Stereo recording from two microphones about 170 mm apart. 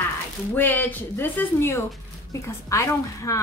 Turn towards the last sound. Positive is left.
turn(degrees=20)  # may be behind; listen again after turning